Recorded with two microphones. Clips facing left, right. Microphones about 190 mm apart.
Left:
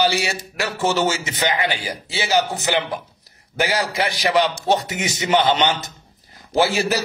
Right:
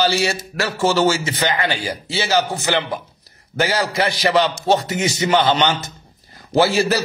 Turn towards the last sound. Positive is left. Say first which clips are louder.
# right 3 dB
turn(degrees=15)  # may be behind; listen again after turning